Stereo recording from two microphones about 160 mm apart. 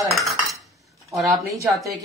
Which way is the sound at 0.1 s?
Centre (ahead or behind).